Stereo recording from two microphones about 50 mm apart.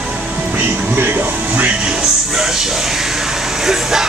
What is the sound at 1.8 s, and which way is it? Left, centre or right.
Music, centre.